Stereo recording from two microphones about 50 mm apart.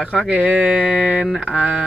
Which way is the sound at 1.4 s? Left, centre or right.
Centre.